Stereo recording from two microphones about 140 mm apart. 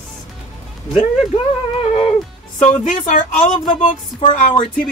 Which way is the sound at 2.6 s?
60° left (ahead or behind).